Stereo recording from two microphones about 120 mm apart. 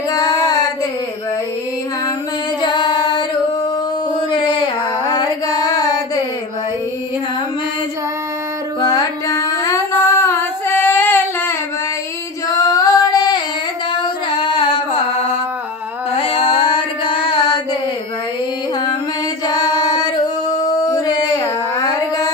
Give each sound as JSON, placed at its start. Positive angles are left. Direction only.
{"t": 0.1, "sound": "child singing", "side_deg": 30}
{"t": 2.6, "sound": "music", "side_deg": 40}
{"t": 4.3, "sound": "a sound", "side_deg": 40}
{"t": 8.8, "sound": "singing", "side_deg": 35}
{"t": 12.4, "sound": "female singing", "side_deg": 30}
{"t": 13.9, "sound": "music", "side_deg": 40}
{"t": 16.2, "sound": "a sound", "side_deg": 50}
{"t": 19.4, "sound": "singing", "side_deg": 35}